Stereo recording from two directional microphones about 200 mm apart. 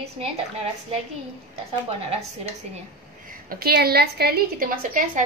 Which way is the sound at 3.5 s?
50° right (ahead or behind).